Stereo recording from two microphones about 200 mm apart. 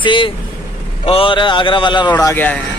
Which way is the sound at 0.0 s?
25° left (ahead or behind).